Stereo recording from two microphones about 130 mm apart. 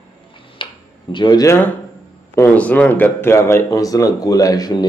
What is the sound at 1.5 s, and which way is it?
Speech, 15° left (ahead or behind).